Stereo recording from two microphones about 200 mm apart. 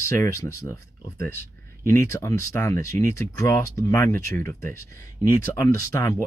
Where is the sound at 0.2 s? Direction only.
15° left (ahead or behind).